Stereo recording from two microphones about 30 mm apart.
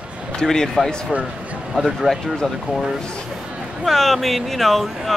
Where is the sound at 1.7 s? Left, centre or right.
Centre.